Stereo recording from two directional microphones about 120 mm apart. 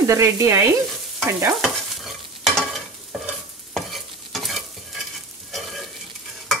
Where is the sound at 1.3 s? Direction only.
25° right (ahead or behind).